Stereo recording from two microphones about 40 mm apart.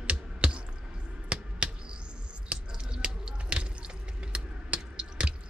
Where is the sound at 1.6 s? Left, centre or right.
Right.